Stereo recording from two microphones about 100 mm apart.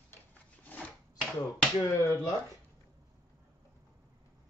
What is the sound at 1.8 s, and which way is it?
Speech, 35° left (ahead or behind).